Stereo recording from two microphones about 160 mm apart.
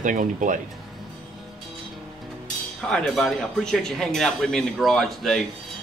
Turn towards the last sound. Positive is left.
turn(degrees=0)  # may be behind; listen again after turning